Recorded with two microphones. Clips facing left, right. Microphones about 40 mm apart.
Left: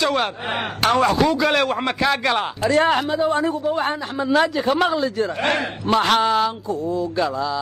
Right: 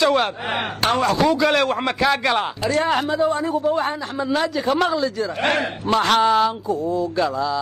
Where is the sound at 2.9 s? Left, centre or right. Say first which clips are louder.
Even; centre.